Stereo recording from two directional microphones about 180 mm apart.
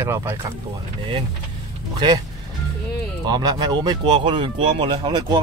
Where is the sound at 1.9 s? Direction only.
20° right (ahead or behind).